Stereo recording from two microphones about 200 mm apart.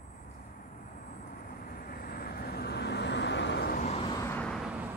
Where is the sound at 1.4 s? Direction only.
45° left (ahead or behind).